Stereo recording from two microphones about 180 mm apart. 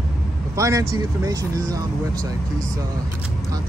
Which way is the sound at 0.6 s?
15° right (ahead or behind).